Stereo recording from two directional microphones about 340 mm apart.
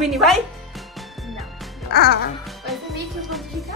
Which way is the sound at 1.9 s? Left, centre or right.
Left.